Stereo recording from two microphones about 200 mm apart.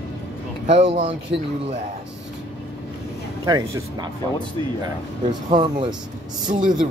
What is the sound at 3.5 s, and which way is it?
Speech, 20° right (ahead or behind).